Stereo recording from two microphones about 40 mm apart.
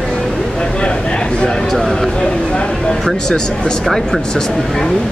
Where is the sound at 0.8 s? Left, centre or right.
Left.